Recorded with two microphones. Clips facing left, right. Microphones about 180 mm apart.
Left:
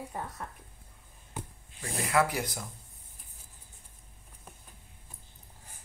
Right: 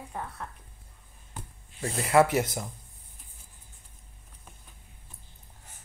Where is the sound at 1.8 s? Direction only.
30° right (ahead or behind).